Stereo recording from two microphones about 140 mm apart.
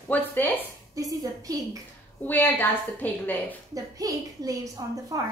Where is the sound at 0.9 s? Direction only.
25° right (ahead or behind).